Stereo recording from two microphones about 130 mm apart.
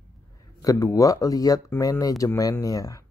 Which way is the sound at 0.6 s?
25° left (ahead or behind).